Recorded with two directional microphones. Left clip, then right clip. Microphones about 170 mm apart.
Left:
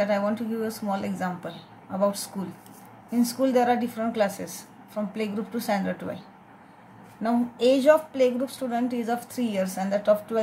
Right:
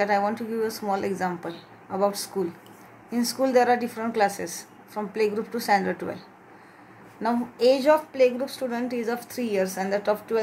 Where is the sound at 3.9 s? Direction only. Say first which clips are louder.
Right 2 dB; 25° right (ahead or behind).